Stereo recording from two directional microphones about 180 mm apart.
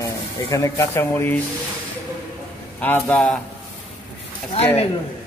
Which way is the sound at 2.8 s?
10° left (ahead or behind).